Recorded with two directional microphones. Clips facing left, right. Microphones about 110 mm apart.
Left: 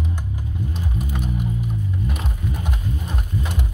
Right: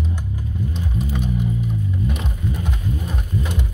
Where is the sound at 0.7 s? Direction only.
10° left (ahead or behind).